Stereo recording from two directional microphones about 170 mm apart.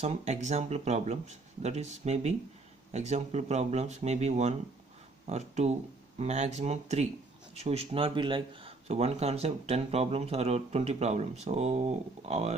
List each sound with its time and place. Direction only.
0.0 s speech: 40° right (ahead or behind)